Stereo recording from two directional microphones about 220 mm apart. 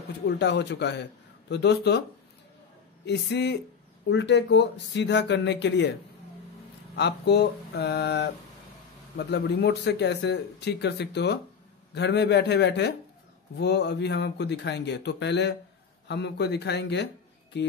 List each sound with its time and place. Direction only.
0.4 s speech: 50° left (ahead or behind)
3.1 s speech: 50° left (ahead or behind)
7.0 s speech: 50° left (ahead or behind)